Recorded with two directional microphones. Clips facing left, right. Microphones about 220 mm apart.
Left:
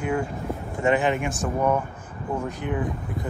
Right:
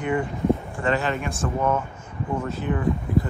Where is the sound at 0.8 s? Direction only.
15° left (ahead or behind).